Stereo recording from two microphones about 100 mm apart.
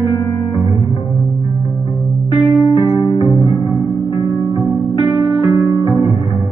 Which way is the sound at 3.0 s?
45° left (ahead or behind).